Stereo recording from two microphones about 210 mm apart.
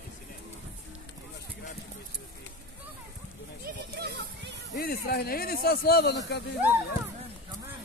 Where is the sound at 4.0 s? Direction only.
50° right (ahead or behind).